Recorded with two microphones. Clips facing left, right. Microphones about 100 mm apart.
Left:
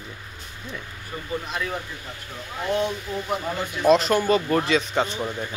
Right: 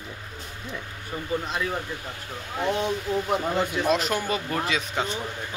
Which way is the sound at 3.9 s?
10° right (ahead or behind).